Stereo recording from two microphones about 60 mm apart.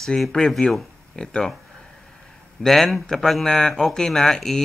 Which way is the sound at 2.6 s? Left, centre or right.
Centre.